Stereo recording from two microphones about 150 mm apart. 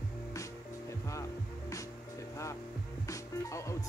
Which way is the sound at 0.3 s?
20° left (ahead or behind).